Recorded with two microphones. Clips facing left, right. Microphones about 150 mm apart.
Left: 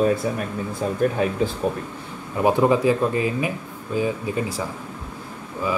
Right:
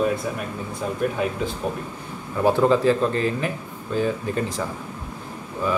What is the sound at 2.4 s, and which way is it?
Speech, 15° left (ahead or behind).